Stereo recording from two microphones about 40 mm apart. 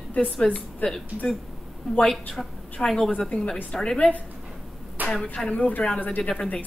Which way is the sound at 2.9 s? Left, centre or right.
Centre.